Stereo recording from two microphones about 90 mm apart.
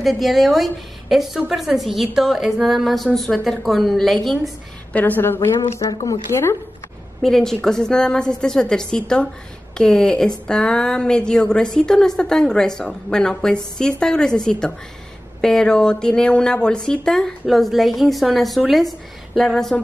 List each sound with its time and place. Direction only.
0.0 s speech: centre (ahead or behind)
4.9 s a woman's voice: 20° left (ahead or behind)
5.8 s speech: 45° left (ahead or behind)
7.2 s a woman's voice: 5° left (ahead or behind)